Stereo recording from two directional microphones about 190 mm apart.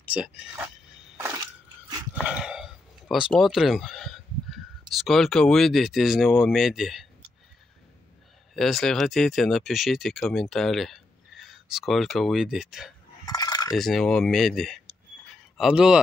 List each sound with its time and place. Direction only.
0.0 s speech: 5° right (ahead or behind)
1.1 s a sound: 15° right (ahead or behind)
2.2 s speech: 5° right (ahead or behind)
8.5 s speech: centre (ahead or behind)
13.2 s coin: 20° left (ahead or behind)
13.7 s speech: centre (ahead or behind)